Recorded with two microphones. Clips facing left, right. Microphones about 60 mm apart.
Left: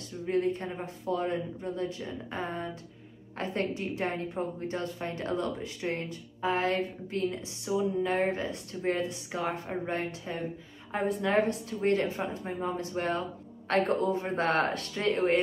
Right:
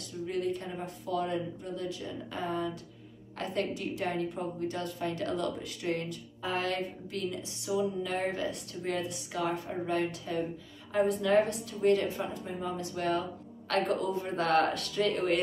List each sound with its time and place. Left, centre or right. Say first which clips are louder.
0.3 s a woman's voice: left 5 dB; left